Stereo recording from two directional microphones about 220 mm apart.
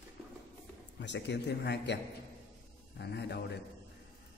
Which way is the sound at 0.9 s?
55° left (ahead or behind).